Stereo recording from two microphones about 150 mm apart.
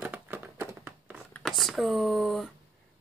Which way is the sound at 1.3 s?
Centre (ahead or behind).